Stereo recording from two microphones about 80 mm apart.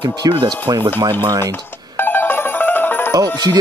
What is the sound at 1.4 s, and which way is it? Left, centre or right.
Music, left.